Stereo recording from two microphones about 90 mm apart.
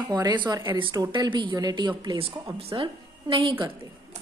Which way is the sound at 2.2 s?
90° right.